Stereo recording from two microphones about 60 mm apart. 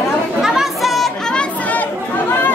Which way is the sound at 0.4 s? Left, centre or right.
Centre.